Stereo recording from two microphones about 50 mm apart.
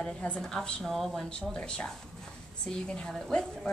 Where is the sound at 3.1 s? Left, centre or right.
Centre.